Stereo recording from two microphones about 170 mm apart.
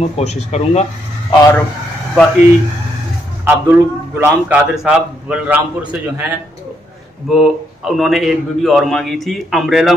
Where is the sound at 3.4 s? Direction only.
15° right (ahead or behind).